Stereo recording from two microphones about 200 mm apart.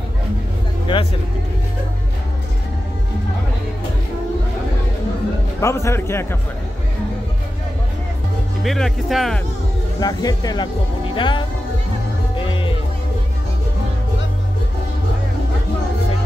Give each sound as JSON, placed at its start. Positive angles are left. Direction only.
{"t": 0.9, "sound": "speech", "side_deg": 25}
{"t": 5.6, "sound": "a man's voice", "side_deg": 15}
{"t": 8.6, "sound": "speech", "side_deg": 0}
{"t": 9.9, "sound": "speech", "side_deg": 20}